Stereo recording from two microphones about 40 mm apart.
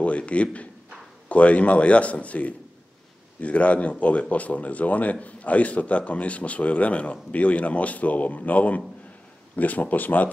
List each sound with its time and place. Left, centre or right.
0.0 s a man's voice: left